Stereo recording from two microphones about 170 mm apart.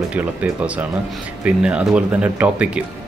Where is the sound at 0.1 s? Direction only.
10° right (ahead or behind).